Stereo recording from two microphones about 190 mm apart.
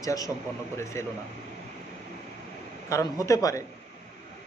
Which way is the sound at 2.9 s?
15° left (ahead or behind).